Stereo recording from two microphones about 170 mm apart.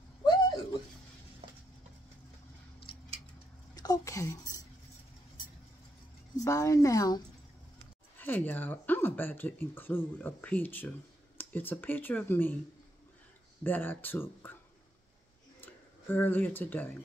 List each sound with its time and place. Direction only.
0.2 s a sound: 25° left (ahead or behind)
1.4 s stir: 35° right (ahead or behind)
3.7 s a sound: 20° left (ahead or behind)
6.3 s speech: 20° left (ahead or behind)
8.2 s speech: 10° left (ahead or behind)
13.7 s speech: 10° left (ahead or behind)
15.6 s speech: 10° left (ahead or behind)